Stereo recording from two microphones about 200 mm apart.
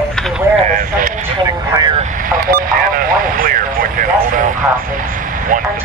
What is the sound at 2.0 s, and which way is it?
Vehicle, 45° right (ahead or behind).